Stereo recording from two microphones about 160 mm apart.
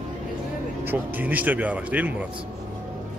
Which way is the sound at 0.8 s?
10° right (ahead or behind).